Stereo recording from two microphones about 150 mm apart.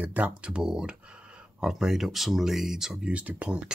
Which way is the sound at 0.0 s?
10° right (ahead or behind).